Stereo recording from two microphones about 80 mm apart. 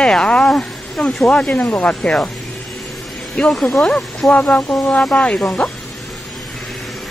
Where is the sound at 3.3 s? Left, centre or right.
Centre.